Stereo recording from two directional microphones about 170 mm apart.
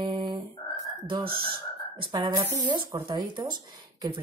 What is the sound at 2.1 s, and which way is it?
Speech, 25° right (ahead or behind).